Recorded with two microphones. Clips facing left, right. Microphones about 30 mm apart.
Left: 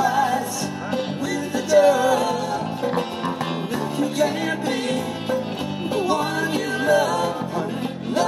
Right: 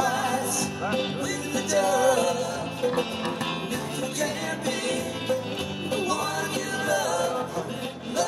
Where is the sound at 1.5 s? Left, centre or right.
Left.